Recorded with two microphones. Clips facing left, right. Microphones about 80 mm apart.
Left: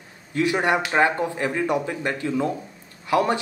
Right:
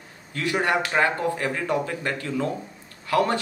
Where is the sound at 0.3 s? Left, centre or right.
Centre.